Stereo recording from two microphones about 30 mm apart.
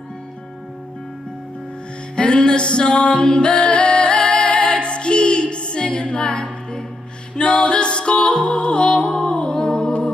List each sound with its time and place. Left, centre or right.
2.1 s music: left
4.7 s music: left